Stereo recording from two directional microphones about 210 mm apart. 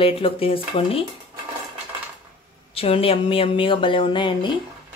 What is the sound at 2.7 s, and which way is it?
Speech, 25° left (ahead or behind).